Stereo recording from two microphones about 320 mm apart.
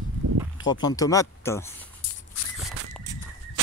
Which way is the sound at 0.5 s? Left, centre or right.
Centre.